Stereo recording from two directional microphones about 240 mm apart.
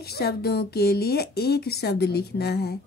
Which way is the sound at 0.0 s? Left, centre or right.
Left.